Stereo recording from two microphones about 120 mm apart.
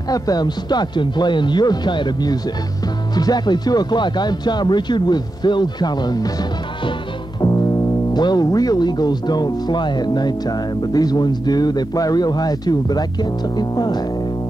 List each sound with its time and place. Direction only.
0.1 s speech: 35° left (ahead or behind)
7.4 s speech: 30° left (ahead or behind)